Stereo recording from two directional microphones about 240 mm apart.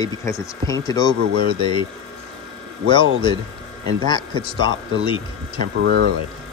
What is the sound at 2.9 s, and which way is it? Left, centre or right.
Speech, centre.